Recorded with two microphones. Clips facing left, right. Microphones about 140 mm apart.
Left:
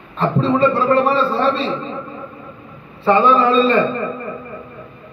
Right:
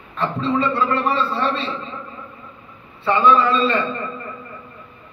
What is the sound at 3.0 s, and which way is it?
A man's voice, 40° left (ahead or behind).